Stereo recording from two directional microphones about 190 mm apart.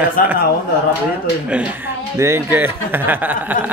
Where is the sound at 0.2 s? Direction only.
50° left (ahead or behind).